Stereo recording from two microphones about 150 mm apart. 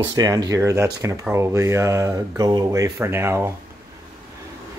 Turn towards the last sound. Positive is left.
turn(degrees=-15)  # may be behind; listen again after turning